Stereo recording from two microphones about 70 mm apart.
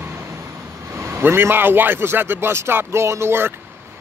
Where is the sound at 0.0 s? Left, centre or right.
Right.